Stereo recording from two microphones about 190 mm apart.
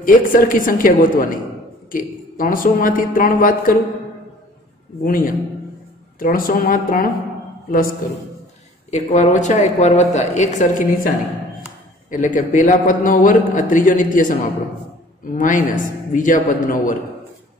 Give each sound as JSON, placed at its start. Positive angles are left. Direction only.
{"t": 0.0, "sound": "a man's voice", "side_deg": 45}
{"t": 5.0, "sound": "a man's voice", "side_deg": 45}
{"t": 12.4, "sound": "a man's voice", "side_deg": 45}
{"t": 15.3, "sound": "a man's voice", "side_deg": 45}